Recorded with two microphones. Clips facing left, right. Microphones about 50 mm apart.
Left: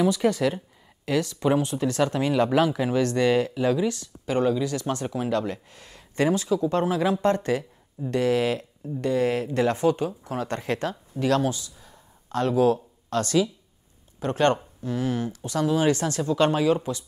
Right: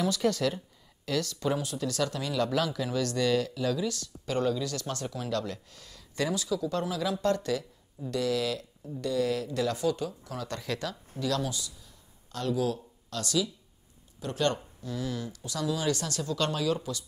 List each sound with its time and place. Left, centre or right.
0.0 s a woman's voice: left